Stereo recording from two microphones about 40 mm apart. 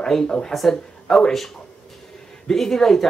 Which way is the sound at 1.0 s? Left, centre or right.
Centre.